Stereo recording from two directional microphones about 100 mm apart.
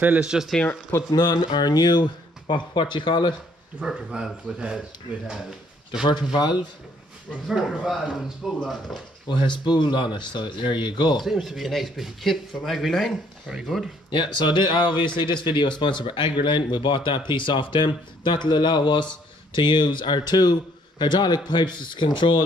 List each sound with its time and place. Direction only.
0.0 s speech: 10° right (ahead or behind)
1.1 s speech: 45° left (ahead or behind)
3.8 s speech: 10° right (ahead or behind)
6.3 s speech: 50° left (ahead or behind)
7.4 s speech: 5° right (ahead or behind)
9.3 s speech: 50° left (ahead or behind)
11.2 s speech: 5° right (ahead or behind)
14.1 s speech: 50° left (ahead or behind)